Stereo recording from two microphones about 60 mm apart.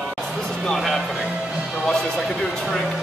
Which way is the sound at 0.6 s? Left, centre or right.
Centre.